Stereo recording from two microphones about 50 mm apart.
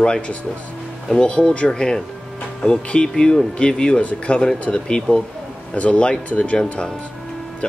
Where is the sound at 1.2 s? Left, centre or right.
Left.